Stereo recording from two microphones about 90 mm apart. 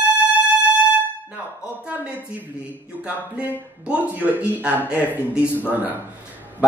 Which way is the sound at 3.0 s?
15° right (ahead or behind).